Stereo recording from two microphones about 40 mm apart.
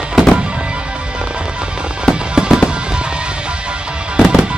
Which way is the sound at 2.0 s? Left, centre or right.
Centre.